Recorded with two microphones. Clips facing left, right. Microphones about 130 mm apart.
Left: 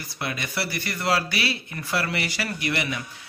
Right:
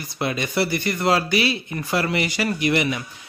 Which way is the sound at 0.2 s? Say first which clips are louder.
Right 7 dB; 25° right (ahead or behind).